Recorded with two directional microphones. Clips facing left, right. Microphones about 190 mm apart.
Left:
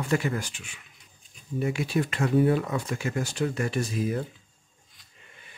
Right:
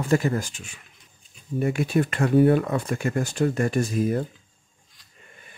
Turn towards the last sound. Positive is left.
turn(degrees=-50)  # may be behind; listen again after turning